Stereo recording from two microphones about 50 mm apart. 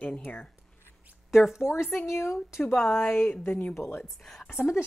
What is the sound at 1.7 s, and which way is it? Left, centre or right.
A woman's voice, left.